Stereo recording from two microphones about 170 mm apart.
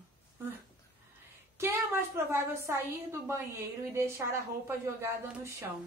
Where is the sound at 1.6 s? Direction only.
15° right (ahead or behind).